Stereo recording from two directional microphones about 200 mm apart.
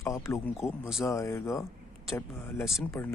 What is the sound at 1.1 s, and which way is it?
Speech, 15° left (ahead or behind).